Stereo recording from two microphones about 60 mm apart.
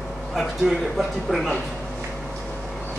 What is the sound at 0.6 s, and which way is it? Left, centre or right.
Speech, centre.